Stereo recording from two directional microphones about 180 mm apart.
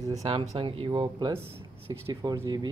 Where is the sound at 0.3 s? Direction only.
30° right (ahead or behind).